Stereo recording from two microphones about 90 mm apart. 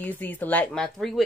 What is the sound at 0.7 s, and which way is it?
Speech, 5° left (ahead or behind).